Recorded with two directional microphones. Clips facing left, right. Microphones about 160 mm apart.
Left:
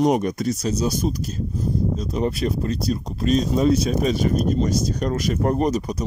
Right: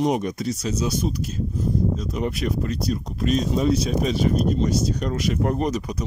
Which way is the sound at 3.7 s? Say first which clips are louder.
Left 2 dB; 50° left (ahead or behind).